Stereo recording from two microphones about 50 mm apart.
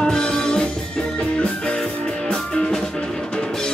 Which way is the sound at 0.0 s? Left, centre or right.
Centre.